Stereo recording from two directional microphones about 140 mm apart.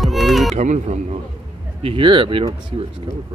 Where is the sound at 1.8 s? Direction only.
40° right (ahead or behind).